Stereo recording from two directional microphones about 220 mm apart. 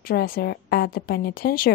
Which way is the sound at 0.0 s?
40° left (ahead or behind).